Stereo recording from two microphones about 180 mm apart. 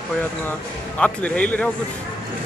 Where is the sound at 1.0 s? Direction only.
10° left (ahead or behind).